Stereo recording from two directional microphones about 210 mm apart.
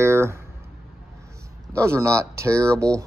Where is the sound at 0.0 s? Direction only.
10° right (ahead or behind).